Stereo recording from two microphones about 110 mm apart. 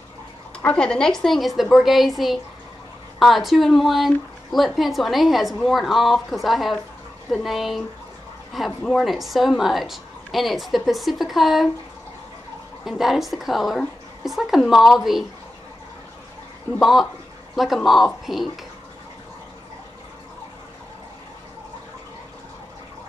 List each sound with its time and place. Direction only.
0.6 s a sound: 15° left (ahead or behind)
0.8 s speech: 5° left (ahead or behind)
12.8 s speech: 5° right (ahead or behind)
16.8 s speech: centre (ahead or behind)